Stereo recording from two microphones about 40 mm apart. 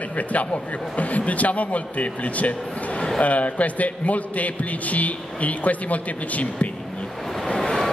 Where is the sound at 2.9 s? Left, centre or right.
Centre.